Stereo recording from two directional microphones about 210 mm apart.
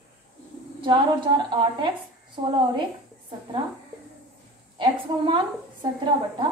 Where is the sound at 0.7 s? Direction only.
20° right (ahead or behind).